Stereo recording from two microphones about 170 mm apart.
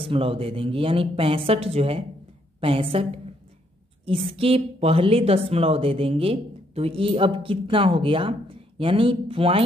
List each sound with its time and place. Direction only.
0.0 s speech: 35° right (ahead or behind)
4.3 s speech: 35° right (ahead or behind)